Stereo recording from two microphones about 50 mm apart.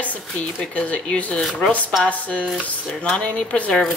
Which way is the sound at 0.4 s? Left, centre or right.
Centre.